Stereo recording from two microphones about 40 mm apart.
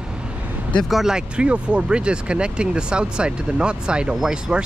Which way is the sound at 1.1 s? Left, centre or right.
Right.